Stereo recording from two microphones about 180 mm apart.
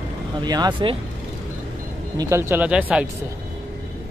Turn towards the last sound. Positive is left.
turn(degrees=-5)  # may be behind; listen again after turning